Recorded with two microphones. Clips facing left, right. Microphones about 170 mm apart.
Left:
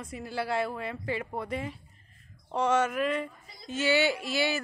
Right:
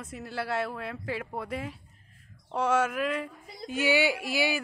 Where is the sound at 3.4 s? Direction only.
60° right (ahead or behind).